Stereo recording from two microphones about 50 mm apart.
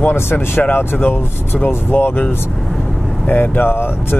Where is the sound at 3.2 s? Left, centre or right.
Left.